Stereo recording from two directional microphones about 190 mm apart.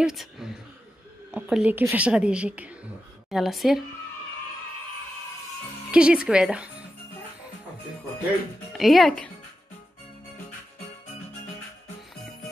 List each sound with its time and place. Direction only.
0.0 s a woman's voice: centre (ahead or behind)
5.9 s speech: 5° right (ahead or behind)
8.7 s speech: centre (ahead or behind)